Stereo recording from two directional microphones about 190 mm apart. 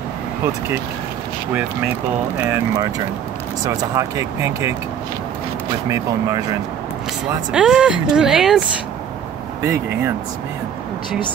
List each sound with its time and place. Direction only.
3.6 s speech: 15° right (ahead or behind)
7.5 s speech: 5° right (ahead or behind)
9.6 s speech: 15° right (ahead or behind)